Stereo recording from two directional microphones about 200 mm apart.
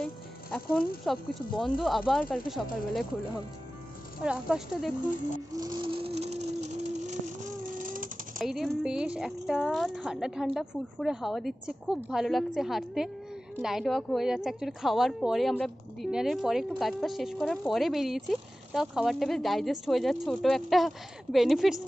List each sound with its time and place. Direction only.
0.0 s a woman's voice: 5° left (ahead or behind)
4.2 s a woman's voice: 5° right (ahead or behind)
5.6 s a sound: 20° right (ahead or behind); by 8.1 s 40° right (ahead or behind)
8.4 s a woman's voice: centre (ahead or behind)